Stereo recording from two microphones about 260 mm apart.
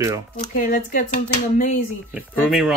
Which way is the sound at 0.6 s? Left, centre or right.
Left.